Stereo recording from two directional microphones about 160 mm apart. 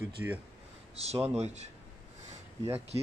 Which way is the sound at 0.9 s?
40° right (ahead or behind).